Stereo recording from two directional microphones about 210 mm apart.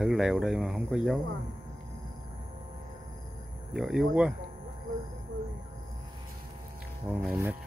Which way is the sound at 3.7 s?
Centre (ahead or behind).